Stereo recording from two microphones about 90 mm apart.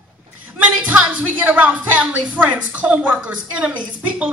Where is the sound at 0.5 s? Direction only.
15° right (ahead or behind).